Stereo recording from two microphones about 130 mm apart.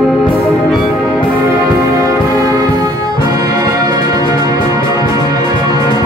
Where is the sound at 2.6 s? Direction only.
30° right (ahead or behind).